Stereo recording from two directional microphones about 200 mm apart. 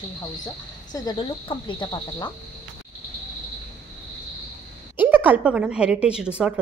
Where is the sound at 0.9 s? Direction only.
25° left (ahead or behind).